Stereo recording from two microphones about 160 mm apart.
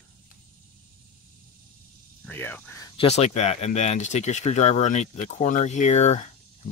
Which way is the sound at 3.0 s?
40° left (ahead or behind).